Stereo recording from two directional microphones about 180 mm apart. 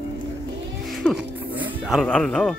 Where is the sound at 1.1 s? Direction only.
10° right (ahead or behind).